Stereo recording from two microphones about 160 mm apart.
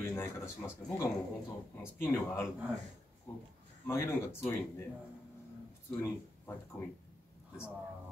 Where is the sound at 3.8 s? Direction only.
20° left (ahead or behind).